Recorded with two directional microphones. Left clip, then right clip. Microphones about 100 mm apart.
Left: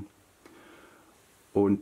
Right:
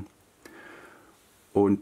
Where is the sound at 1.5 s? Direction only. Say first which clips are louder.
Right 2 dB; 30° right (ahead or behind).